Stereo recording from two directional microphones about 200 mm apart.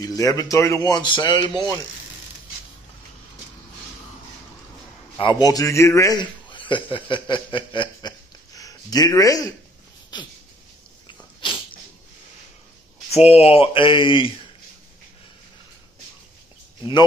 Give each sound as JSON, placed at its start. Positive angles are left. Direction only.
{"t": 0.0, "sound": "a man's voice", "side_deg": 20}
{"t": 5.1, "sound": "a man's voice", "side_deg": 25}
{"t": 10.1, "sound": "a sound", "side_deg": 20}
{"t": 13.1, "sound": "a man's voice", "side_deg": 30}